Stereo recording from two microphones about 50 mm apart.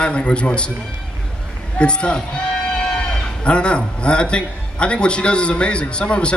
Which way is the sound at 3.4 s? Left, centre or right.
Left.